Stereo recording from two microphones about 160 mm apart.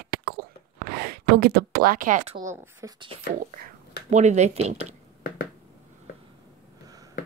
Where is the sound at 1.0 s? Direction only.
75° right (ahead or behind); by 2.2 s 60° right (ahead or behind).